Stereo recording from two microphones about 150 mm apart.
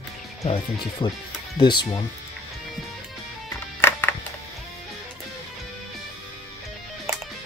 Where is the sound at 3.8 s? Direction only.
15° left (ahead or behind).